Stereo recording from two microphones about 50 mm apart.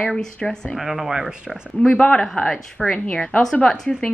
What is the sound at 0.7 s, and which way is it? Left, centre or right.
Cough, centre.